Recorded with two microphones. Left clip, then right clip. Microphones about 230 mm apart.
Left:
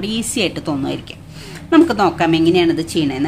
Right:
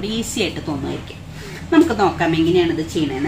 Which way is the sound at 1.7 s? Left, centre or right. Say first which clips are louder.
Left 2 dB; left.